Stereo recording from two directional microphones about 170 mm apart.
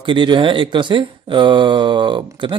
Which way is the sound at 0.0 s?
30° right (ahead or behind).